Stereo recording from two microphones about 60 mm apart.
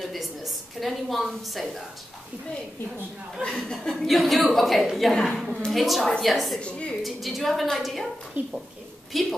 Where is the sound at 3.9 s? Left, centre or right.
Centre.